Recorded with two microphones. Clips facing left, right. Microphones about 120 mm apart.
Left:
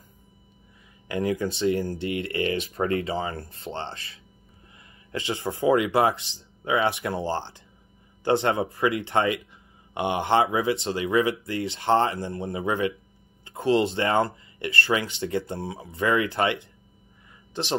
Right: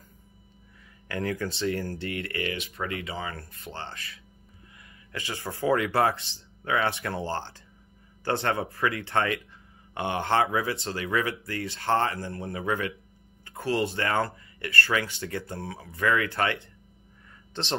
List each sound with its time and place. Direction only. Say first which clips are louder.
1.0 s speech: left 4 dB; 20° left (ahead or behind)